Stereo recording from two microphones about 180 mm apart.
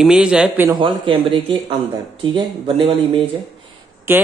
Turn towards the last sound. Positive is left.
turn(degrees=-15)  # may be behind; listen again after turning